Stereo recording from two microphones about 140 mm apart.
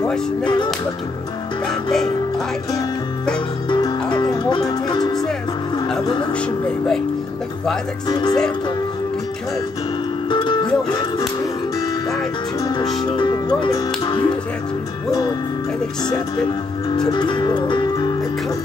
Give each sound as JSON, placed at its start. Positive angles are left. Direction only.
{"t": 0.0, "sound": "speech", "side_deg": 5}
{"t": 1.7, "sound": "music", "side_deg": 5}
{"t": 3.6, "sound": "music", "side_deg": 35}
{"t": 8.1, "sound": "music", "side_deg": 30}
{"t": 10.3, "sound": "music", "side_deg": 35}
{"t": 12.5, "sound": "music", "side_deg": 25}
{"t": 12.9, "sound": "speech", "side_deg": 35}
{"t": 15.0, "sound": "music", "side_deg": 25}
{"t": 17.1, "sound": "music", "side_deg": 35}